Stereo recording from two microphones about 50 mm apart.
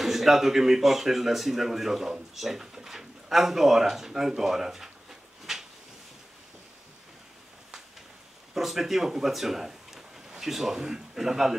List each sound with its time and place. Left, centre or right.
0.0 s speech: centre
5.5 s a sound: centre
8.5 s speech: centre